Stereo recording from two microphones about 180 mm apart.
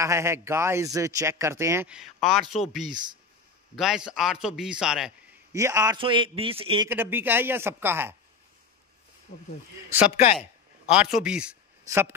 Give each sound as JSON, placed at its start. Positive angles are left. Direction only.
{"t": 0.0, "sound": "speech", "side_deg": -15}
{"t": 1.9, "sound": "a man's voice", "side_deg": -5}
{"t": 3.7, "sound": "a man's voice", "side_deg": -5}
{"t": 5.5, "sound": "speech", "side_deg": -15}
{"t": 5.9, "sound": "a man's voice", "side_deg": -30}
{"t": 6.9, "sound": "speech", "side_deg": -10}
{"t": 10.1, "sound": "speech", "side_deg": 35}
{"t": 10.9, "sound": "a man's voice", "side_deg": -5}